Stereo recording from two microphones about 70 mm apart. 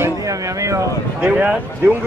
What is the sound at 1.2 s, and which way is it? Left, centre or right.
Speech, centre.